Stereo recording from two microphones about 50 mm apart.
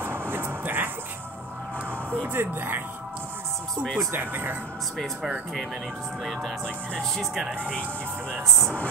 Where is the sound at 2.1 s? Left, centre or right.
Right.